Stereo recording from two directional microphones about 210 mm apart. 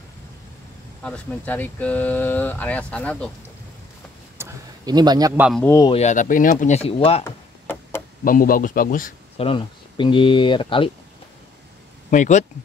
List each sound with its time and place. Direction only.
1.0 s speech: 5° left (ahead or behind)
4.4 s a sound: 15° right (ahead or behind)
5.3 s speech: 5° right (ahead or behind)
5.6 s speech: 10° left (ahead or behind)
5.9 s speech: 30° left (ahead or behind)
7.2 s tick-tock: 10° left (ahead or behind)
8.2 s speech: 40° left (ahead or behind)
9.4 s speech: 25° left (ahead or behind)
12.1 s speech: 35° left (ahead or behind)